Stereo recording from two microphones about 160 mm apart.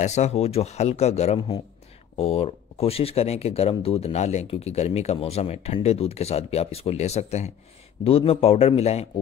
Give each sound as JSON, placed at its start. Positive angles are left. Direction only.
{"t": 0.0, "sound": "speech", "side_deg": 45}